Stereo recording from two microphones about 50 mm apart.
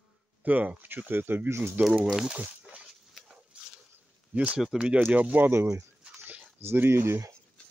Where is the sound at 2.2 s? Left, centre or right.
Right.